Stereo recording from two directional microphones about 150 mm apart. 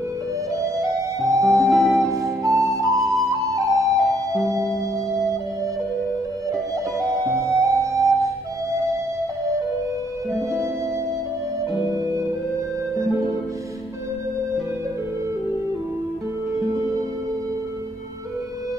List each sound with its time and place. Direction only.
0.6 s music: 20° right (ahead or behind)
1.6 s music: centre (ahead or behind)
2.0 s flute: 25° right (ahead or behind)
4.3 s music: 20° right (ahead or behind)
7.3 s music: 20° right (ahead or behind)